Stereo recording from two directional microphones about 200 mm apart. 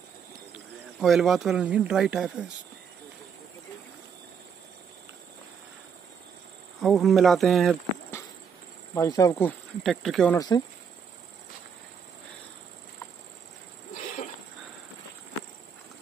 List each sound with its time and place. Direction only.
1.0 s speech: centre (ahead or behind)
6.8 s speech: centre (ahead or behind)
8.9 s speech: 15° left (ahead or behind)
10.3 s speech: 20° left (ahead or behind)
13.9 s wheeze: 40° left (ahead or behind)